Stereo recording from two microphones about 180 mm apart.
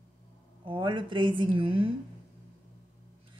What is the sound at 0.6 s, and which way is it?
Speech, 30° right (ahead or behind).